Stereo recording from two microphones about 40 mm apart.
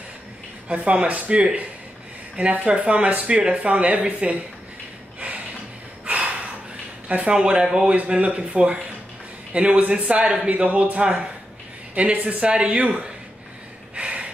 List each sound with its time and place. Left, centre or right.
0.7 s speech: right
6.0 s a sound: right
7.1 s speech: right
7.3 s speech: centre
8.1 s a man's voice: right
13.9 s gasp: right